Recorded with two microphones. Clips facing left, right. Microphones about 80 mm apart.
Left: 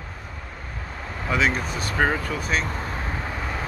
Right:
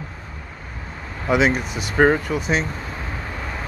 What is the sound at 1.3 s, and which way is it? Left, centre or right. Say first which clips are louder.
Speech: right 5 dB; centre.